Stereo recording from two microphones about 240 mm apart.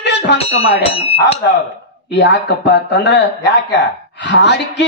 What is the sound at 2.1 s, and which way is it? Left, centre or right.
A man's voice, left.